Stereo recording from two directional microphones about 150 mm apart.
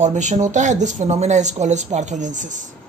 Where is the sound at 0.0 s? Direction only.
50° right (ahead or behind).